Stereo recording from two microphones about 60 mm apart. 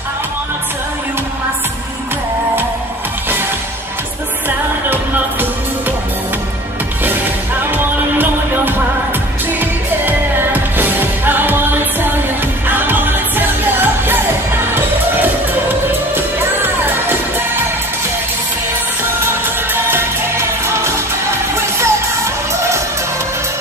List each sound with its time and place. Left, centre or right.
7.7 s music: right
15.9 s music: right
19.7 s music: right